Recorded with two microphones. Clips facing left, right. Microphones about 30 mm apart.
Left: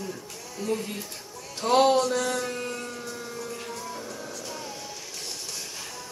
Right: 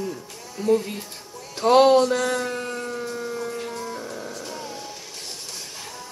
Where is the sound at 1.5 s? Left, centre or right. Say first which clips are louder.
Right 5 dB; centre.